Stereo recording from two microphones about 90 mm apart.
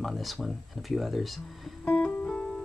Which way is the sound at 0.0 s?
Centre (ahead or behind).